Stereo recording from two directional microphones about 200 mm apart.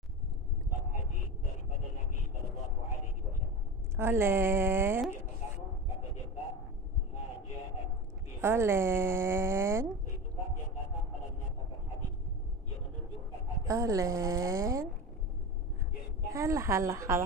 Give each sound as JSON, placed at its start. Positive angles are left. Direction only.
{"t": 3.9, "sound": "a woman's voice", "side_deg": -10}
{"t": 8.4, "sound": "speech", "side_deg": -10}
{"t": 13.7, "sound": "speech", "side_deg": -15}
{"t": 16.3, "sound": "speech", "side_deg": -15}